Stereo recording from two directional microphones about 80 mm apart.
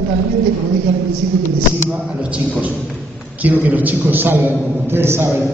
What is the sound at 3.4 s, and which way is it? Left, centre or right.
A man's voice, right.